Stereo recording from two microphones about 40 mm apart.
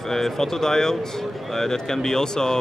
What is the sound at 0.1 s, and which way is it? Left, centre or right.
A man's voice, centre.